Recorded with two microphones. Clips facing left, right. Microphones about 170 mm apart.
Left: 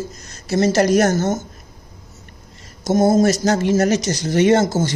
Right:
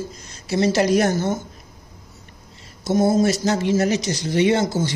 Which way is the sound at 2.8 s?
45° left (ahead or behind).